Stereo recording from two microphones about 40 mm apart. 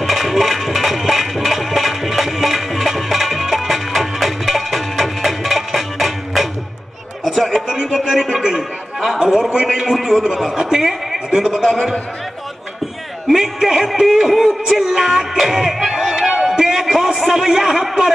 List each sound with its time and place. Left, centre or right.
0.0 s music: centre
7.6 s a man's voice: centre
8.5 s a man's voice: centre
13.3 s a man's voice: centre
13.9 s music: centre
16.8 s a man's voice: centre